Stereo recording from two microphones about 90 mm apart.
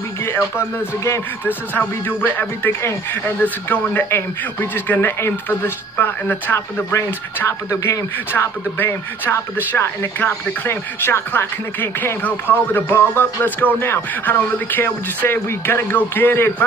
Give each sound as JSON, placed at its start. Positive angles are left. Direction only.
{"t": 0.2, "sound": "speech", "side_deg": 25}
{"t": 1.4, "sound": "speech", "side_deg": 20}
{"t": 8.3, "sound": "speech", "side_deg": 25}